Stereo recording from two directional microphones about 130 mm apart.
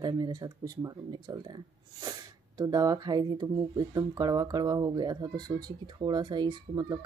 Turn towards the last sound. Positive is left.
turn(degrees=-35)  # may be behind; listen again after turning